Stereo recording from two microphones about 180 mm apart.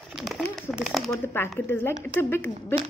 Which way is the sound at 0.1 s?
Centre (ahead or behind).